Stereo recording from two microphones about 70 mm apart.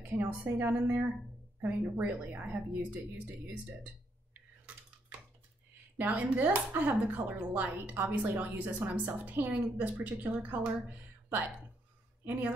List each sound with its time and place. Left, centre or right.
0.0 s a woman's voice: right
3.8 s a sound: right
5.9 s a woman's voice: right
12.3 s a woman's voice: right